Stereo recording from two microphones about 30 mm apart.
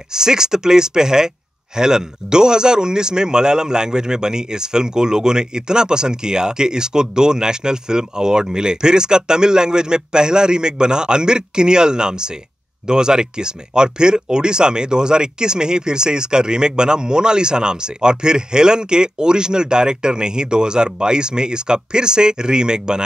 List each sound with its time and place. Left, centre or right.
0.1 s speech: centre